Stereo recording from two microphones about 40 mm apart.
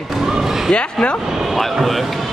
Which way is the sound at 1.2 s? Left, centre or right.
Centre.